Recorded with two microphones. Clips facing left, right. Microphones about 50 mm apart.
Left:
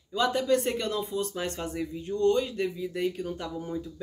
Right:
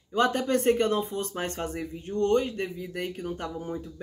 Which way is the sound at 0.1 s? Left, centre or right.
Right.